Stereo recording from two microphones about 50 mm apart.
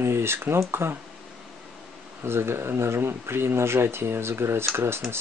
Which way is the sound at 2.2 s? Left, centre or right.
Right.